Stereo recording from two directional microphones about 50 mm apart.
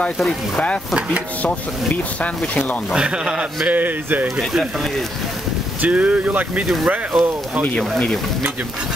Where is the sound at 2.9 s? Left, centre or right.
Centre.